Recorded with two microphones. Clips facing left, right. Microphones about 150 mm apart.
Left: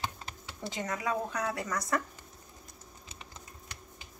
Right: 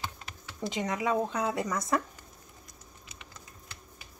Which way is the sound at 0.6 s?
20° right (ahead or behind).